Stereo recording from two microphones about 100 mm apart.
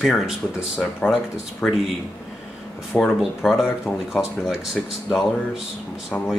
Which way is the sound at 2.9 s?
Centre (ahead or behind).